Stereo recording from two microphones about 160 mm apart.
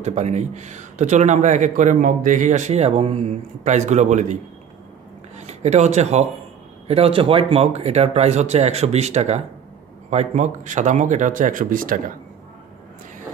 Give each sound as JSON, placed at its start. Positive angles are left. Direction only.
{"t": 0.0, "sound": "a man's voice", "side_deg": -45}
{"t": 5.5, "sound": "a man's voice", "side_deg": -45}